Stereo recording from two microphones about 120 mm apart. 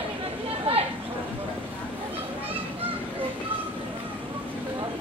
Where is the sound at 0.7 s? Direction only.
55° right (ahead or behind).